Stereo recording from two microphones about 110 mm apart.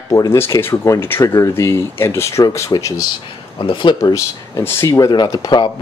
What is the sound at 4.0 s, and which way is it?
Speech, 30° left (ahead or behind).